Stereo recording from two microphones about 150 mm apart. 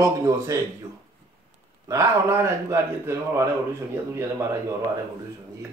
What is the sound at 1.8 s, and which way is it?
Speech, 20° right (ahead or behind).